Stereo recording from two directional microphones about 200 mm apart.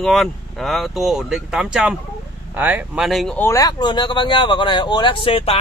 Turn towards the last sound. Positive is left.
turn(degrees=25)  # may be behind; listen again after turning